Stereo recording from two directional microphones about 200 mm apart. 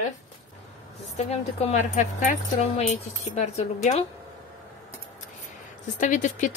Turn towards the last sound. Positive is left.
turn(degrees=40)  # may be behind; listen again after turning